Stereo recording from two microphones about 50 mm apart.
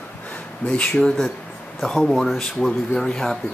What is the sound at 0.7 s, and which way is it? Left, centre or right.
Speech, left.